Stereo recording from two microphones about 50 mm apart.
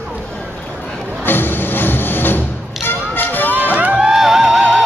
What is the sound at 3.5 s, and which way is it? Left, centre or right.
Music, right.